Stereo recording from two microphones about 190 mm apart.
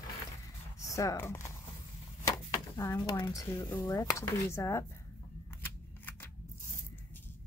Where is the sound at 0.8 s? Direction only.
15° left (ahead or behind).